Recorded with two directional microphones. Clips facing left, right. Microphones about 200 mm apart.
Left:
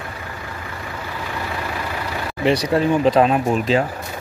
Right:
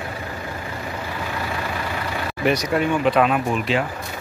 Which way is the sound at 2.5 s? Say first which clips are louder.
Left 3 dB; 30° left (ahead or behind).